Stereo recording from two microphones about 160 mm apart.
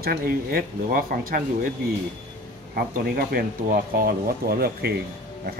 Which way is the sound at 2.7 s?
65° right (ahead or behind).